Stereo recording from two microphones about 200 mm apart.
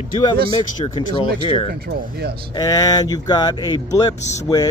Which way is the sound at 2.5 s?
20° left (ahead or behind).